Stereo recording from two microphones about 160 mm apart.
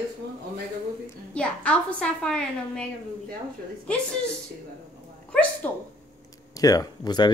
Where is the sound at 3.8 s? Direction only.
5° left (ahead or behind).